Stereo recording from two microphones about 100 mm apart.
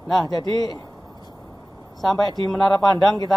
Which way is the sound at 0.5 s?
40° left (ahead or behind).